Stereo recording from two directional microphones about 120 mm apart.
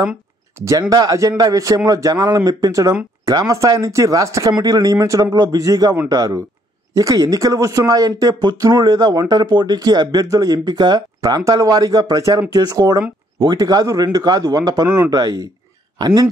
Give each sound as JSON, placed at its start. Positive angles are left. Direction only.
{"t": 0.6, "sound": "speech", "side_deg": -30}